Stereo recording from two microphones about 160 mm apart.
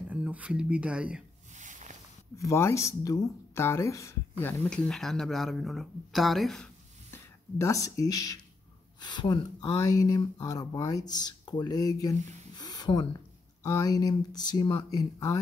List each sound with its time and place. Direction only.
0.1 s speech: 10° right (ahead or behind)
1.6 s a sound: 50° right (ahead or behind)
2.3 s speech: 20° left (ahead or behind); by 6.7 s centre (ahead or behind)
7.1 s speech: 20° left (ahead or behind)
12.5 s a sound: 25° left (ahead or behind)
13.6 s speech: 20° left (ahead or behind)